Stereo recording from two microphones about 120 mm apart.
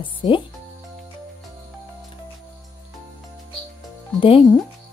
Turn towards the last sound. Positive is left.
turn(degrees=50)  # may be behind; listen again after turning